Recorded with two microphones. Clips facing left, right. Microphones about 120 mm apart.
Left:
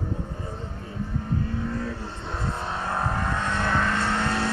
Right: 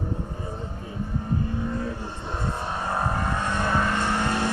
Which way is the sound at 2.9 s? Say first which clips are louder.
Right 1 dB; 10° right (ahead or behind).